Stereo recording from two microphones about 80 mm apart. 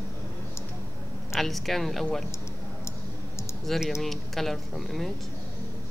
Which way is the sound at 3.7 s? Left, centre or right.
Centre.